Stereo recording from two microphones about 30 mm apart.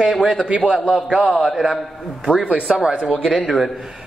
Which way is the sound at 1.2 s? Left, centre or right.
Right.